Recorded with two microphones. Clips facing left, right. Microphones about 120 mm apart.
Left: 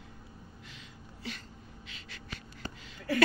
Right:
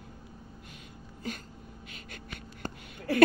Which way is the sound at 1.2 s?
45° right (ahead or behind).